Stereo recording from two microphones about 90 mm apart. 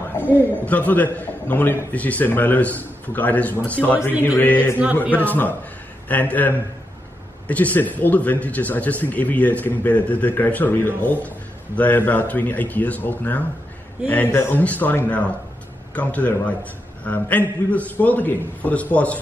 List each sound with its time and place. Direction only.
0.2 s a man's voice: 20° left (ahead or behind)